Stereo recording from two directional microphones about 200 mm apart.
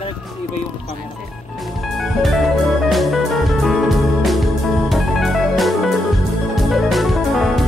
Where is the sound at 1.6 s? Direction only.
Centre (ahead or behind).